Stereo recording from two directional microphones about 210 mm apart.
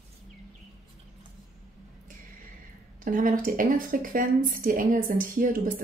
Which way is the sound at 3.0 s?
40° right (ahead or behind).